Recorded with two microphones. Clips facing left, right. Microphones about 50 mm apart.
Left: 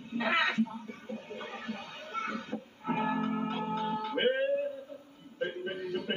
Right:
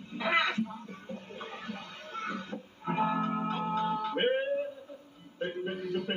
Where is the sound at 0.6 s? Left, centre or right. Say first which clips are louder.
Left 1 dB; centre.